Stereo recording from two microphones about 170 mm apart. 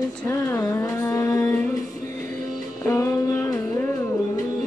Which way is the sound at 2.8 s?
15° left (ahead or behind).